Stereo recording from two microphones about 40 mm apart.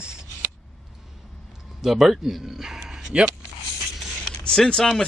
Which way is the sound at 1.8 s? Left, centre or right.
Centre.